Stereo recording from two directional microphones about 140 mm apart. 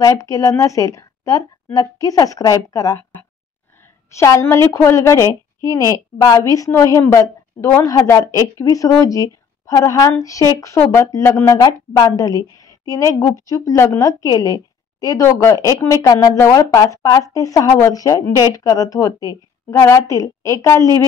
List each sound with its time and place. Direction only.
0.0 s a woman's voice: 25° left (ahead or behind)
4.1 s a woman's voice: 20° left (ahead or behind)